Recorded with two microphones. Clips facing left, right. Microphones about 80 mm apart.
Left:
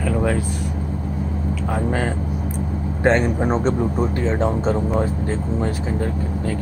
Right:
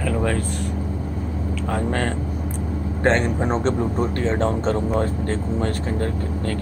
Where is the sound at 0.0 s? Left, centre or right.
Centre.